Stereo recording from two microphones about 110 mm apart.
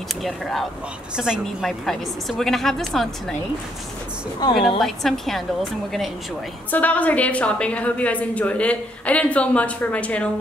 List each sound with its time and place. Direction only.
0.2 s a woman's voice: centre (ahead or behind)
4.6 s a woman's voice: centre (ahead or behind)
6.7 s a woman's voice: 15° left (ahead or behind)